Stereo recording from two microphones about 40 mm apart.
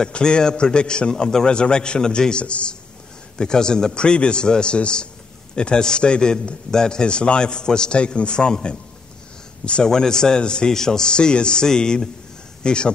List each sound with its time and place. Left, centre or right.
0.0 s a man's voice: left
9.8 s a man's voice: centre